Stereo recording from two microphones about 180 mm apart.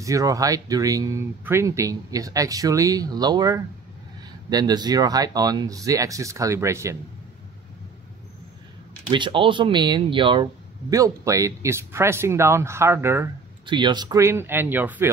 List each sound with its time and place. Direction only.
0.0 s speech: 20° right (ahead or behind)
9.1 s speech: 25° right (ahead or behind)
13.7 s speech: 25° right (ahead or behind)